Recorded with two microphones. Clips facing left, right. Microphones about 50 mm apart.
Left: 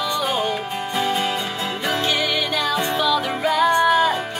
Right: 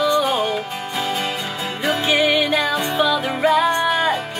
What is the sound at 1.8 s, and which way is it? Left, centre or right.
Music, centre.